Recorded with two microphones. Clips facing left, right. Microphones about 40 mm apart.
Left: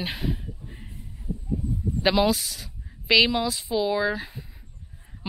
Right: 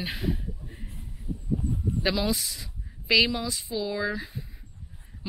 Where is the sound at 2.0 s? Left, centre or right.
Left.